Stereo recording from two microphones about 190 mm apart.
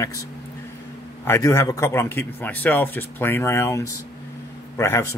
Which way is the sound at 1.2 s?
15° left (ahead or behind).